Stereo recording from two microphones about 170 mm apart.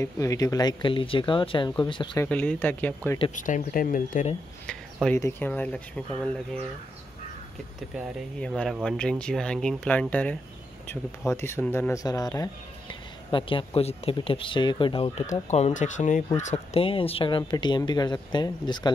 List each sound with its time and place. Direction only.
0.0 s speech: 20° left (ahead or behind)
2.2 s speech: 10° left (ahead or behind)
3.3 s speech: 50° left (ahead or behind)
5.0 s speech: 10° left (ahead or behind)
8.4 s speech: 5° left (ahead or behind); by 15.2 s 30° left (ahead or behind)
15.4 s speech: 40° left (ahead or behind); by 18.9 s 25° left (ahead or behind)